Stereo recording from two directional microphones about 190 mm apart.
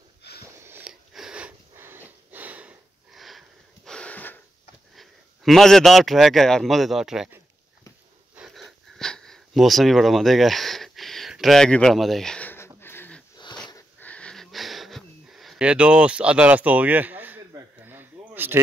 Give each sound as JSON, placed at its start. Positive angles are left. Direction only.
{"t": 0.2, "sound": "sniff", "side_deg": 60}
{"t": 0.6, "sound": "sniff", "side_deg": -10}
{"t": 4.9, "sound": "speech", "side_deg": 0}
{"t": 8.4, "sound": "sniff", "side_deg": 0}
{"t": 13.7, "sound": "wheeze", "side_deg": 15}